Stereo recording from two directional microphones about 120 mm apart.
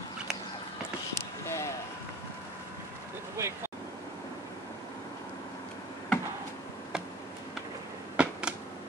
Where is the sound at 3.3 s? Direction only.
20° right (ahead or behind).